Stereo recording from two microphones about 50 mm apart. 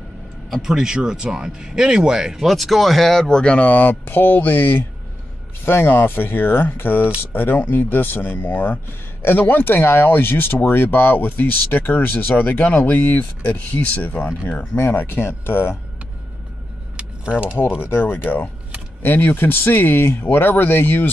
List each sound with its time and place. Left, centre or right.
0.5 s speech: centre
3.4 s speech: left
17.3 s speech: right
17.8 s speech: left